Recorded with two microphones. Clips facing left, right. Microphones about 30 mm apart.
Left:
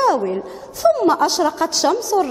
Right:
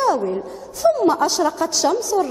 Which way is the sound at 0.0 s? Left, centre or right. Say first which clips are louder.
Left 2 dB; left.